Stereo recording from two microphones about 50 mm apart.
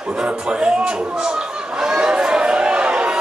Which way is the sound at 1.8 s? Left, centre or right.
Centre.